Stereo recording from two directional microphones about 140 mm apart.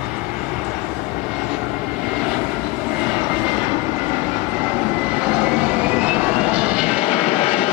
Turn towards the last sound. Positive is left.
turn(degrees=45)  # may be behind; listen again after turning